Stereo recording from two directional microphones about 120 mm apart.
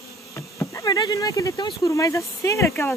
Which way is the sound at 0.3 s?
25° left (ahead or behind).